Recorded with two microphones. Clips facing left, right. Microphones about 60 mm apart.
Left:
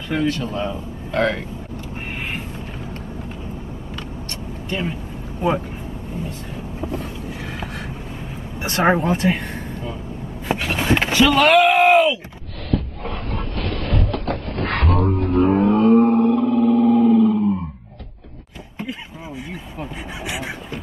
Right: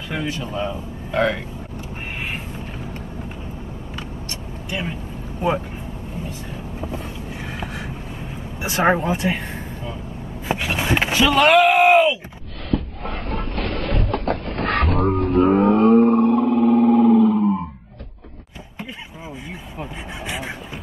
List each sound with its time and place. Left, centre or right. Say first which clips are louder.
0.1 s speech: left 5 dB; centre
4.6 s speech: left 2 dB; centre
6.2 s vehicle: left 1 dB; centre
8.5 s speech: left 1 dB; centre
11.8 s groan: even; centre
12.7 s a sound: even; right
15.0 s music: even; right
16.2 s a sound: even; right
19.8 s a sound: left 1 dB; centre